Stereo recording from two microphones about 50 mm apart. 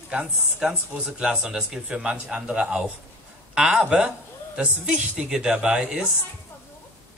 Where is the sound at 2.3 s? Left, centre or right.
Right.